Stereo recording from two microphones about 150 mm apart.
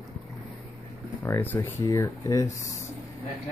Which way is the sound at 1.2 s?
15° left (ahead or behind).